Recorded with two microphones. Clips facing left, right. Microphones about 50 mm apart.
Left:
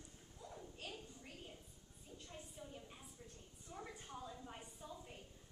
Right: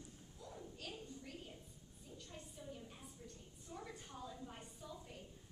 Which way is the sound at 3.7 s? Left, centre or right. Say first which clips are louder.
Even; centre.